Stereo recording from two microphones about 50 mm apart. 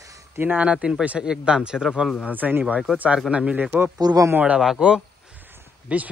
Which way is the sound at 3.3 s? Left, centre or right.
Right.